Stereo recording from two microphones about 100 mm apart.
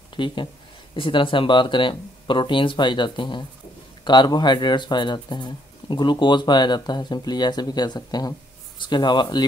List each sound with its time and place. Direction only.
0.1 s speech: 55° left (ahead or behind)